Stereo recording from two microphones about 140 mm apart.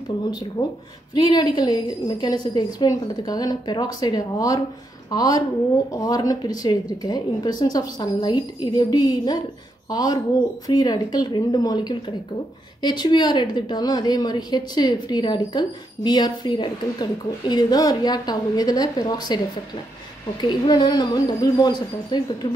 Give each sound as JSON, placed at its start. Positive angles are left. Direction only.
{"t": 0.3, "sound": "a woman's voice", "side_deg": 30}